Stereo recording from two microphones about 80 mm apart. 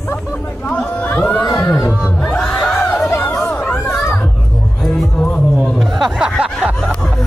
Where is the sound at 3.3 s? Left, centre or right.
Centre.